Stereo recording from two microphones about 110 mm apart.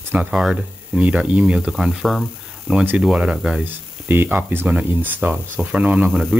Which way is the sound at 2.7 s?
15° right (ahead or behind).